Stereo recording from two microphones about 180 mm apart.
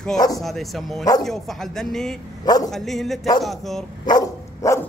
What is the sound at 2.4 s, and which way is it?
Speech, 20° left (ahead or behind).